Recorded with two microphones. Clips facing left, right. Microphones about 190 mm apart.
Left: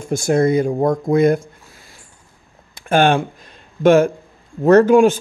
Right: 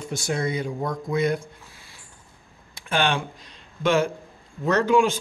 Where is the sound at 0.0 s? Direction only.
50° left (ahead or behind).